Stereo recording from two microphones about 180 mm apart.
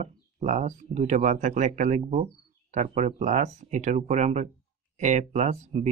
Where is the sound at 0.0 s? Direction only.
40° right (ahead or behind).